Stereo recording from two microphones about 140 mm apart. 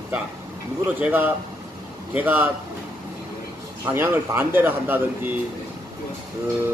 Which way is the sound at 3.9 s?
15° right (ahead or behind).